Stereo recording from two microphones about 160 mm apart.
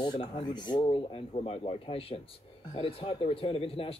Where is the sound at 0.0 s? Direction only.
30° left (ahead or behind).